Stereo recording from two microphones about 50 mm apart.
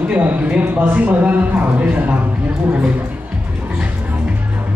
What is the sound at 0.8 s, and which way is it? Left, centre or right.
Speech, right.